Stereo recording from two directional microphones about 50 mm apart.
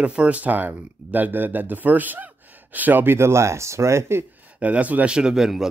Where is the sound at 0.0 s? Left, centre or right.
Right.